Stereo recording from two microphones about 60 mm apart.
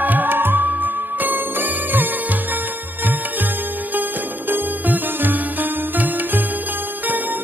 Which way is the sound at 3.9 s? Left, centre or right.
Right.